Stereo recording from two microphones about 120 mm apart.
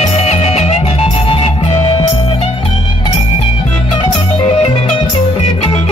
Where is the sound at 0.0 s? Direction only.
65° left (ahead or behind).